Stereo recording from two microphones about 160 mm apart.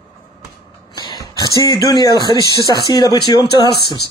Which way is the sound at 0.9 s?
25° left (ahead or behind).